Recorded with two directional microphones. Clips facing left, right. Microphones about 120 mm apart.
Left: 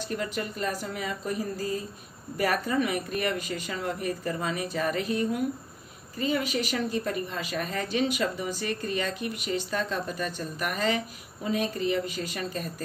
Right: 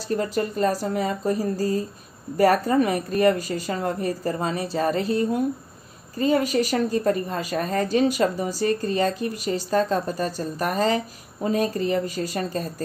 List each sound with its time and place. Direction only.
0.1 s a woman's voice: 35° right (ahead or behind)